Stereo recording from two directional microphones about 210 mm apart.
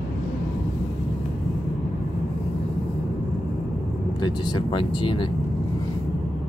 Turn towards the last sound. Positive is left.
turn(degrees=25)  # may be behind; listen again after turning